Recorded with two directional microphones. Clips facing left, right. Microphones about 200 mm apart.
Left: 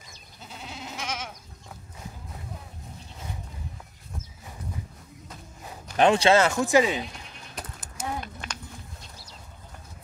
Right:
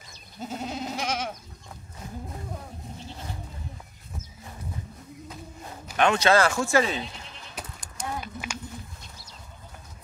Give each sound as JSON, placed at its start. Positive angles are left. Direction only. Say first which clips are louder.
{"t": 0.4, "sound": "goat", "louder": "right 9 dB", "side_deg": -45}
{"t": 5.3, "sound": "walk", "louder": "left 1 dB", "side_deg": 0}
{"t": 5.9, "sound": "speech", "louder": "left 2 dB", "side_deg": 30}
{"t": 7.5, "sound": "sheep", "louder": "left 1 dB", "side_deg": 0}